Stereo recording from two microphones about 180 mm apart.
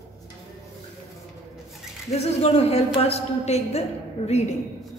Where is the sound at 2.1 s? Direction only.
35° left (ahead or behind).